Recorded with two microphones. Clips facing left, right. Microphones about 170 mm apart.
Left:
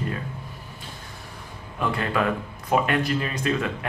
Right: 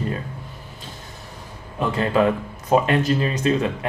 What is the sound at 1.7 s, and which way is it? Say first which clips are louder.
Speech: right 5 dB; 25° right (ahead or behind).